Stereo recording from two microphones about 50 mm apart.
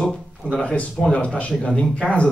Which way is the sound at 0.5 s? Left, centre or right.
Left.